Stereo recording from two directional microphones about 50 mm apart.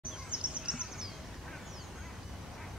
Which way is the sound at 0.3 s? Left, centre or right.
Right.